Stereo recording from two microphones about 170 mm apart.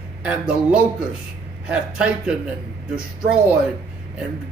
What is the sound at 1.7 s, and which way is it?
Speech, 5° right (ahead or behind).